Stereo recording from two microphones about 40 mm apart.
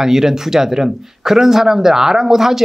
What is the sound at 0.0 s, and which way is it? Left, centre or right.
Speech, centre.